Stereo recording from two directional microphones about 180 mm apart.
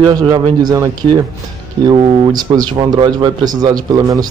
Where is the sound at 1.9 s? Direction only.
20° right (ahead or behind).